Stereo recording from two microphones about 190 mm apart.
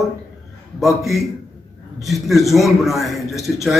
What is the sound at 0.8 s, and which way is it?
A man's voice, centre (ahead or behind).